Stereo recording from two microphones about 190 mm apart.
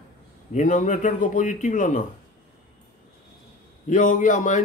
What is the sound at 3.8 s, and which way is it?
Speech, 45° left (ahead or behind).